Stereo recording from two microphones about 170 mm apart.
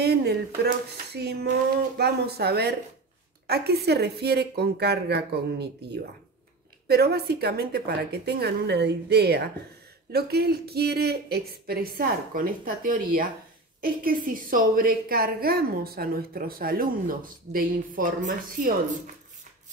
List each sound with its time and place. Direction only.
0.0 s a woman's voice: 70° right (ahead or behind); by 18.8 s 55° right (ahead or behind)